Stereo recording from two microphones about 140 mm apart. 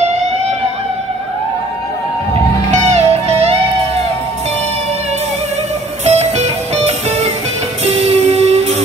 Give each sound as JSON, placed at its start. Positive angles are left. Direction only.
{"t": 2.7, "sound": "music", "side_deg": -55}
{"t": 6.0, "sound": "music", "side_deg": -50}